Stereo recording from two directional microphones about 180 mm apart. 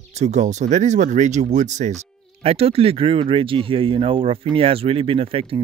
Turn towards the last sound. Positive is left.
turn(degrees=-30)  # may be behind; listen again after turning